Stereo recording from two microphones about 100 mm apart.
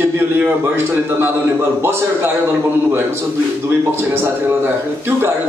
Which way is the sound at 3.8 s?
20° right (ahead or behind).